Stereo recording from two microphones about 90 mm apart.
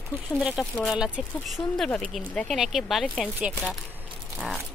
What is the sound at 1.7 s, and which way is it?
Speech, 5° left (ahead or behind).